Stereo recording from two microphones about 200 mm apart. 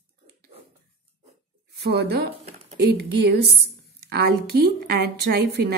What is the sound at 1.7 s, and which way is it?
A woman's voice, 55° right (ahead or behind).